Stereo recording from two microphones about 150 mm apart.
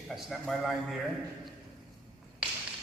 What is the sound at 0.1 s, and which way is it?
Speech, centre (ahead or behind).